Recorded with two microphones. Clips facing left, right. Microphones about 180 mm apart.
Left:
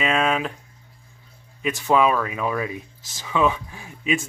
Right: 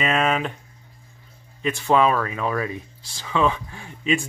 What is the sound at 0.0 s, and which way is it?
Speech, centre (ahead or behind).